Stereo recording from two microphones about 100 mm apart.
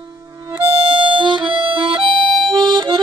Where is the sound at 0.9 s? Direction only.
55° right (ahead or behind).